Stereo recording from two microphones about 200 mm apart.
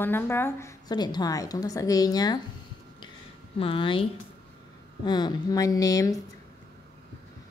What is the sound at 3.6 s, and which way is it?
A woman's voice, 25° left (ahead or behind).